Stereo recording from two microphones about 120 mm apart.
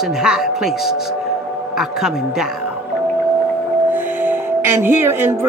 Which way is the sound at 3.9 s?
15° right (ahead or behind).